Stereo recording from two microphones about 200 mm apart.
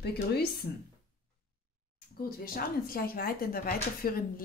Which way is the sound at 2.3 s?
45° left (ahead or behind).